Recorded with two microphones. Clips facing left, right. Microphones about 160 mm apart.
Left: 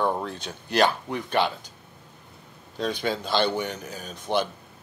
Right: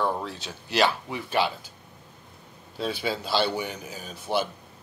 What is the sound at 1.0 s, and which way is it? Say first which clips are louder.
Speech: left 1 dB; 5° right (ahead or behind).